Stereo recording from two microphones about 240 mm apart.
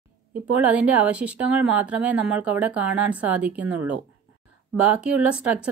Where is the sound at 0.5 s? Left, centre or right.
Centre.